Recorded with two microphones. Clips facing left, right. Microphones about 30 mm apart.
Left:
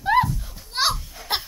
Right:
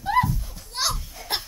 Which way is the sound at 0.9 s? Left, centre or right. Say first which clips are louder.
Left 3 dB; centre.